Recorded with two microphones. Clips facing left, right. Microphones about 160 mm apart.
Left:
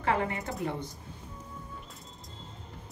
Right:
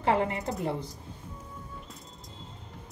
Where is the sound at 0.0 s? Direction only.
25° right (ahead or behind).